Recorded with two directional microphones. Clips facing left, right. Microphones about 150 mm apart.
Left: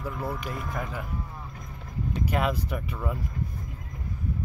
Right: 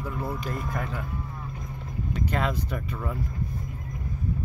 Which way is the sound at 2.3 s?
5° left (ahead or behind).